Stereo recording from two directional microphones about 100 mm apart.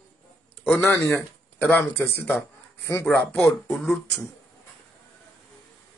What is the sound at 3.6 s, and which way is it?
Speech, 10° left (ahead or behind).